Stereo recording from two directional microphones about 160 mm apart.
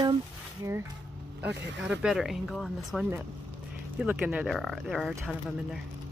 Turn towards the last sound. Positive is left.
turn(degrees=0)  # may be behind; listen again after turning